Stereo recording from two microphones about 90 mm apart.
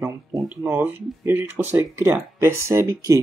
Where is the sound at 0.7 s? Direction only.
20° right (ahead or behind).